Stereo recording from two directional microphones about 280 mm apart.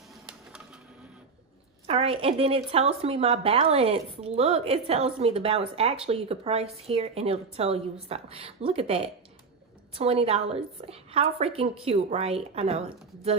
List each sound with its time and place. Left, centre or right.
1.9 s speech: right